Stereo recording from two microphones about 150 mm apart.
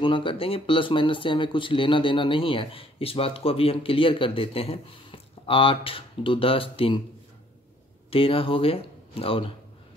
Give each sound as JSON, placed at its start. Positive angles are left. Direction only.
{"t": 0.0, "sound": "speech", "side_deg": 35}
{"t": 8.1, "sound": "speech", "side_deg": 40}